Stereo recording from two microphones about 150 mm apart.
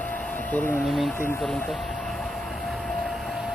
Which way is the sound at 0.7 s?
5° right (ahead or behind).